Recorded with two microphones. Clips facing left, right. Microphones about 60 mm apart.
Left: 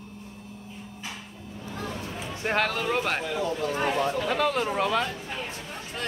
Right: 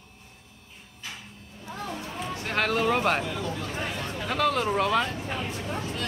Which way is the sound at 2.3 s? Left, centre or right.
Left.